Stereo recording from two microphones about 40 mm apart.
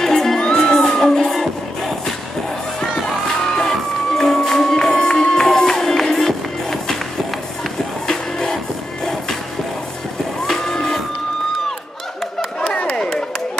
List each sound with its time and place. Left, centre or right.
0.0 s crowd: centre
0.4 s music: left
0.7 s music: centre
10.4 s music: centre
12.4 s a sound: left